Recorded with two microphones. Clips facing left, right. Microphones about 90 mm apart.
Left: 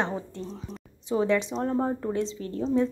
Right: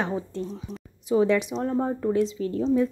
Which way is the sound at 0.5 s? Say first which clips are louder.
Right 2 dB; 5° right (ahead or behind).